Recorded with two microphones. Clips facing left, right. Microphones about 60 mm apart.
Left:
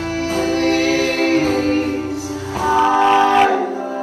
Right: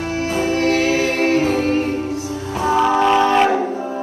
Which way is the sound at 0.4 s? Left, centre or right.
Left.